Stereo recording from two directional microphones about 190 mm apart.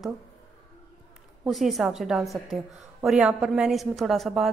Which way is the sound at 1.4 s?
Centre (ahead or behind).